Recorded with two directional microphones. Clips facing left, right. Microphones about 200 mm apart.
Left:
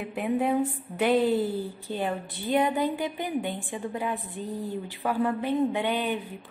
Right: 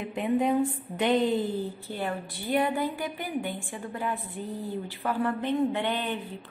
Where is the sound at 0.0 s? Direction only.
5° left (ahead or behind).